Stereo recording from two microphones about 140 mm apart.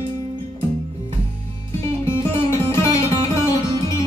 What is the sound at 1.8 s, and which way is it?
Music, 15° left (ahead or behind).